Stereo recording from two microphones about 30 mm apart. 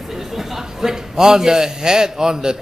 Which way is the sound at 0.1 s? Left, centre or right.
Centre.